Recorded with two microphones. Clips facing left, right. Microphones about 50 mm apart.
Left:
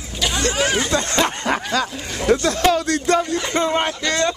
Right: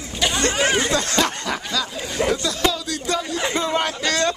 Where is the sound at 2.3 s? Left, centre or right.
Left.